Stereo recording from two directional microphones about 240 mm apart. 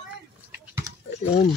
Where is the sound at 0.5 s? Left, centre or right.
Centre.